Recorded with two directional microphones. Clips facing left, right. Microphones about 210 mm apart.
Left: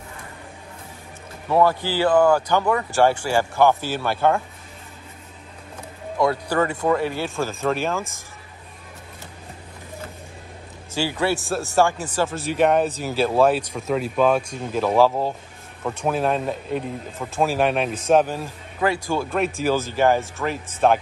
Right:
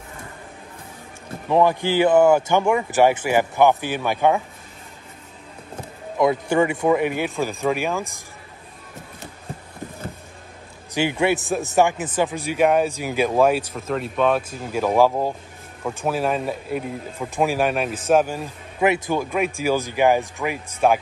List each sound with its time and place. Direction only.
1.5 s speech: 15° right (ahead or behind)
6.1 s speech: 20° right (ahead or behind)
11.0 s a man's voice: 20° right (ahead or behind)